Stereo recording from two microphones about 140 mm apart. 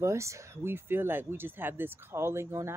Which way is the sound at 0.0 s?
20° right (ahead or behind).